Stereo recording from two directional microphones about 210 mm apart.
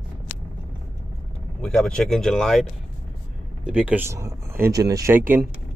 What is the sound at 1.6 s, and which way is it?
Speech, 5° left (ahead or behind).